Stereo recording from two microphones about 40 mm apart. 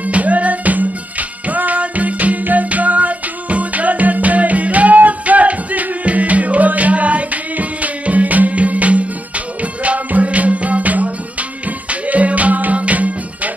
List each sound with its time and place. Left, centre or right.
0.0 s music: right